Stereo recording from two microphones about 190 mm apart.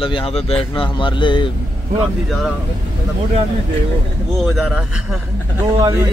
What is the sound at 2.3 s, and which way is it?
Speech, centre (ahead or behind).